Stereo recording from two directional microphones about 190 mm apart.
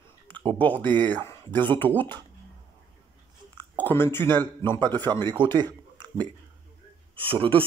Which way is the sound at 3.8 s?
10° left (ahead or behind).